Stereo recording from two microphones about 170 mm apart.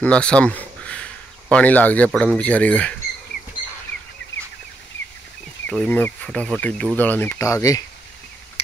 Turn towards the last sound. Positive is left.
turn(degrees=20)  # may be behind; listen again after turning